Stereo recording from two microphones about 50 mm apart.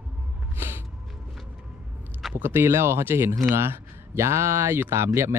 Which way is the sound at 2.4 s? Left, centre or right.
Right.